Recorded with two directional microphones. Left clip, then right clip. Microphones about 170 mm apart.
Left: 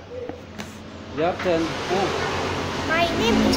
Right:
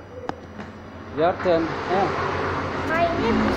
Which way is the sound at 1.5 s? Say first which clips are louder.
Right 2 dB; centre (ahead or behind).